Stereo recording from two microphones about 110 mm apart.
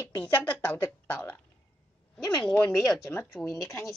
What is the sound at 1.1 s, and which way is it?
Speech, 15° left (ahead or behind).